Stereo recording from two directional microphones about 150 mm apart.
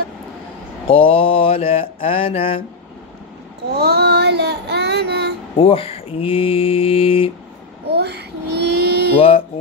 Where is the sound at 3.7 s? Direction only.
90° right.